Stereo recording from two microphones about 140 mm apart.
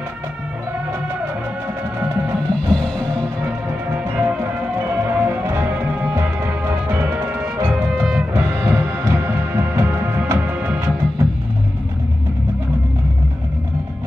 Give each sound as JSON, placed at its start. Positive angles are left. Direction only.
{"t": 2.5, "sound": "music", "side_deg": 5}
{"t": 3.9, "sound": "music", "side_deg": -15}
{"t": 7.6, "sound": "music", "side_deg": 0}
{"t": 8.4, "sound": "music", "side_deg": -20}